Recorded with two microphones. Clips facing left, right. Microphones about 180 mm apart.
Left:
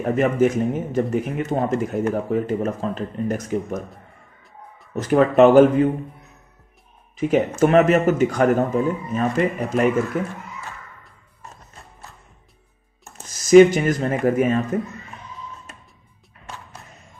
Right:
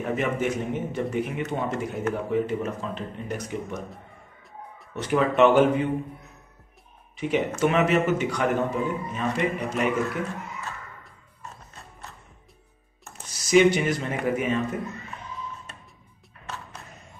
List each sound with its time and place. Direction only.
0.0 s speech: 45° left (ahead or behind)
4.9 s speech: 45° left (ahead or behind)
7.2 s speech: 45° left (ahead or behind)
13.5 s speech: 45° left (ahead or behind)